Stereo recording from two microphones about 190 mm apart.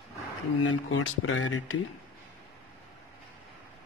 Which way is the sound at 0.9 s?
90° left.